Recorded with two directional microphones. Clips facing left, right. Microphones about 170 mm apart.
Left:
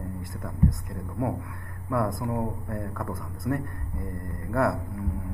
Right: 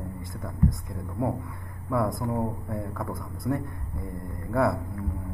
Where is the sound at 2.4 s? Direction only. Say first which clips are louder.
Right 1 dB; 5° right (ahead or behind).